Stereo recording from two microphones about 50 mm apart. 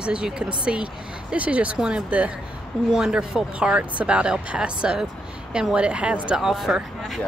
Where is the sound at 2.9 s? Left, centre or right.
Centre.